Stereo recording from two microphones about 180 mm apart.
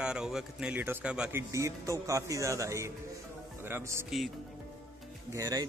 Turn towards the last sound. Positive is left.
turn(degrees=-20)  # may be behind; listen again after turning